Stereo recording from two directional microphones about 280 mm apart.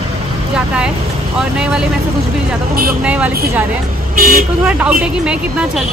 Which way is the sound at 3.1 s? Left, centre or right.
Centre.